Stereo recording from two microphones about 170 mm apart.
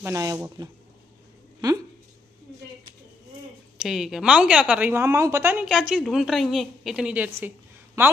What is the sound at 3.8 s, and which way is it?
A woman's voice, 5° right (ahead or behind).